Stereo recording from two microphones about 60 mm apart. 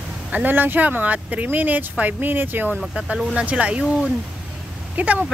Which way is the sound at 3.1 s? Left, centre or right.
Centre.